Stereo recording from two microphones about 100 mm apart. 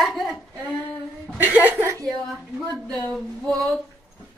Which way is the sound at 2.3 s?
Centre (ahead or behind).